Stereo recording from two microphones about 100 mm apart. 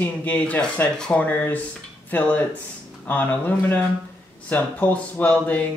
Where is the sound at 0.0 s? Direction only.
15° left (ahead or behind).